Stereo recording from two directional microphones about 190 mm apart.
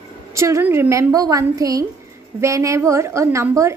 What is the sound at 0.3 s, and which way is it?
A woman's voice, 15° right (ahead or behind).